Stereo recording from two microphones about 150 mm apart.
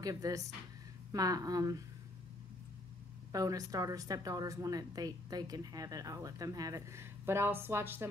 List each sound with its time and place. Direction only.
0.0 s a woman's voice: 25° right (ahead or behind)
3.3 s a woman's voice: 25° right (ahead or behind)